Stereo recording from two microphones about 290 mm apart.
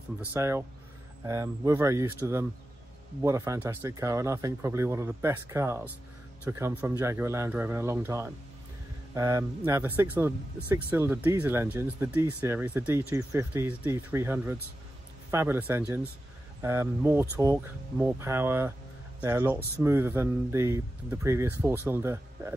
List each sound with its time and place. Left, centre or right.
0.3 s speech: centre